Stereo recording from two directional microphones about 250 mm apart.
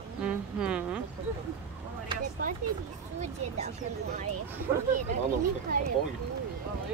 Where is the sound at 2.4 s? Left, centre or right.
Right.